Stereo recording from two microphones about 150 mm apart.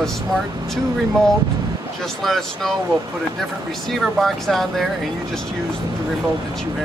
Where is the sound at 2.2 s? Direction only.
Centre (ahead or behind).